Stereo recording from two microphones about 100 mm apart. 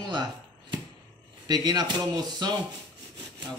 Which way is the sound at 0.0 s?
50° right (ahead or behind).